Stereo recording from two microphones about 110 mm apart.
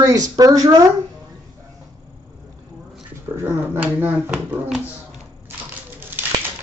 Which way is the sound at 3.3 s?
20° right (ahead or behind).